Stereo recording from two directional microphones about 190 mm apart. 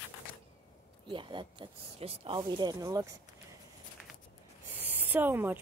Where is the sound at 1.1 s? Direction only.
25° right (ahead or behind).